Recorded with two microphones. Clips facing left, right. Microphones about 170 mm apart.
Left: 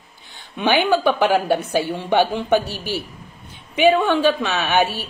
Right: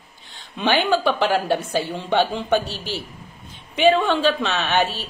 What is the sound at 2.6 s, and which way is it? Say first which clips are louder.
Speech: left 3 dB; 60° left (ahead or behind).